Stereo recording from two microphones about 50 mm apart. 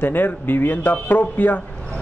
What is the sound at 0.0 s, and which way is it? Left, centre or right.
A man's voice, left.